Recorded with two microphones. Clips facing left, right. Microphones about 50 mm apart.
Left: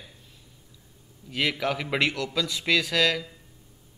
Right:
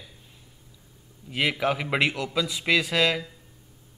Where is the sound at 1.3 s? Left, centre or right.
Centre.